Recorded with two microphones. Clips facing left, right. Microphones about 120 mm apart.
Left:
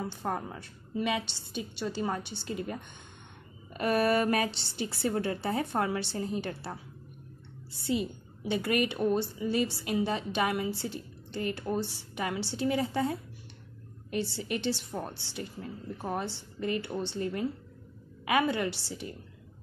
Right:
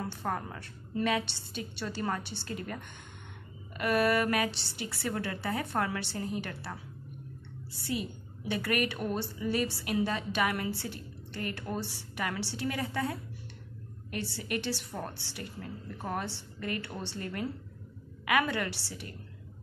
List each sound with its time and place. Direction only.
0.2 s a woman's voice: 20° left (ahead or behind)
3.7 s a woman's voice: 30° left (ahead or behind)